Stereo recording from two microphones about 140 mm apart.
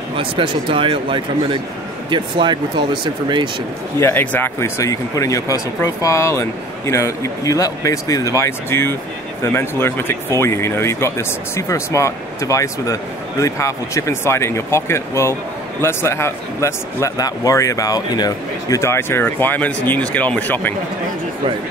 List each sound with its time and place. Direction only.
0.2 s speech: 35° right (ahead or behind)
4.0 s speech: 15° left (ahead or behind)